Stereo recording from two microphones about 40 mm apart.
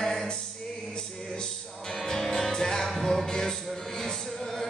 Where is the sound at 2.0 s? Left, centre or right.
Centre.